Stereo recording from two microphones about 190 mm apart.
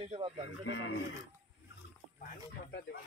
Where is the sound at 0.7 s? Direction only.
80° left.